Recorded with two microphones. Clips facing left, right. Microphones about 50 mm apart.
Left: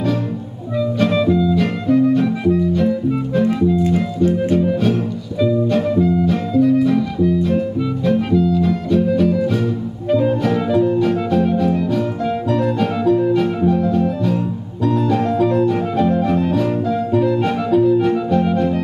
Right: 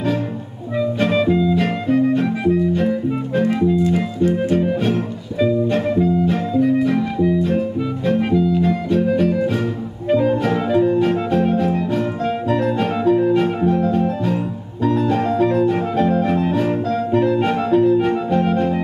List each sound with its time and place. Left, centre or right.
0.7 s music: right